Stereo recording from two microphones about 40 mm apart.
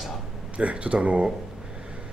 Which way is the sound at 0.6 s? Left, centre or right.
Right.